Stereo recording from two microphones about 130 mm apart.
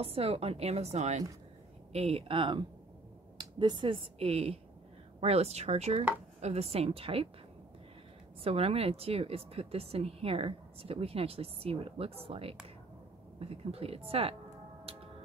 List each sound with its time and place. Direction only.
0.0 s speech: 50° right (ahead or behind)
8.5 s speech: 50° right (ahead or behind)